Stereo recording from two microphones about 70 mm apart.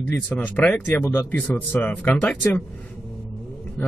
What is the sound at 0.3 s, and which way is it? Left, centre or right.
Speech, left.